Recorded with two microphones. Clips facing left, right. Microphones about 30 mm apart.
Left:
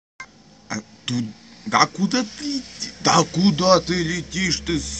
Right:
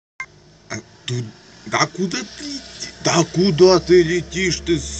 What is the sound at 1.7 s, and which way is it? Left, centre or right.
Speech, left.